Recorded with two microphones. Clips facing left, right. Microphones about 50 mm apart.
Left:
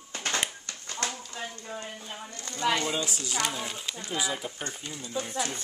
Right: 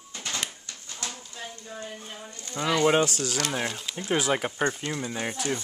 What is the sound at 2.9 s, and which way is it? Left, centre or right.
Speech, right.